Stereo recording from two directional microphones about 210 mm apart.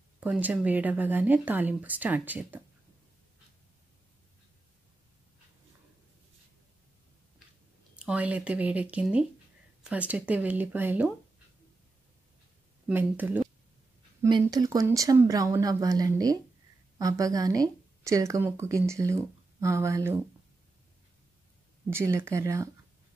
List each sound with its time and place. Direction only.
0.2 s speech: 5° right (ahead or behind)
7.9 s speech: 5° right (ahead or behind)
12.8 s speech: 10° right (ahead or behind)
14.2 s speech: 20° right (ahead or behind)
21.9 s speech: 10° right (ahead or behind)